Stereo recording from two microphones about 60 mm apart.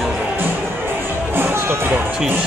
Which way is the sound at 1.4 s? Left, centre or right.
Right.